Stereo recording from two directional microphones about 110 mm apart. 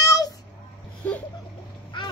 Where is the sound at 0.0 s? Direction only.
35° left (ahead or behind).